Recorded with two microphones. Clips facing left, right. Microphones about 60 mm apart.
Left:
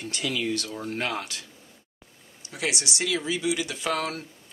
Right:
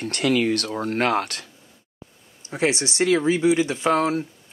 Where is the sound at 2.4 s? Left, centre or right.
Right.